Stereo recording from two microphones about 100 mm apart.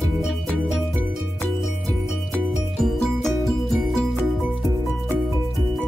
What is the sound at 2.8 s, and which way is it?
Music, 5° left (ahead or behind).